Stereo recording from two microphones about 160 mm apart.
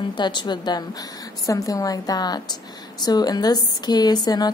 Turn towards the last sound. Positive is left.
turn(degrees=25)  # may be behind; listen again after turning